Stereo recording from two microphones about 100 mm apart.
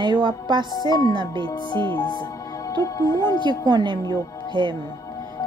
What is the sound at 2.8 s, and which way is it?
Speech, 30° left (ahead or behind).